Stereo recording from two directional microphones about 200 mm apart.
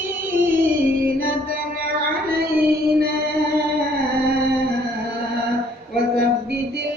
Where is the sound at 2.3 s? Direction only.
50° right (ahead or behind).